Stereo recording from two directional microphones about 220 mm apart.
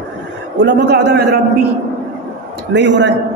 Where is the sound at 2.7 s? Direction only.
55° right (ahead or behind).